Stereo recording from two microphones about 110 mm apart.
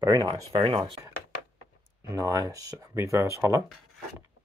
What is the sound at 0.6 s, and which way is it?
Speech, 50° right (ahead or behind).